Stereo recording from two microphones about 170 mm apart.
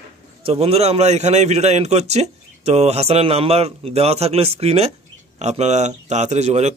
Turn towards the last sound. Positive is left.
turn(degrees=-40)  # may be behind; listen again after turning